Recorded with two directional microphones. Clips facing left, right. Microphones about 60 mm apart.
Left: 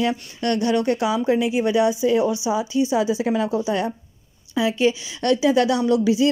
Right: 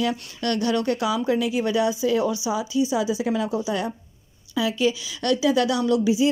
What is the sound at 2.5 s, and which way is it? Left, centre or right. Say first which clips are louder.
A woman's voice: left 2 dB; left.